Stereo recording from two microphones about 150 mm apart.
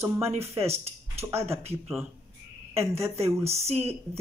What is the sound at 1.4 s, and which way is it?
Speech, 40° right (ahead or behind).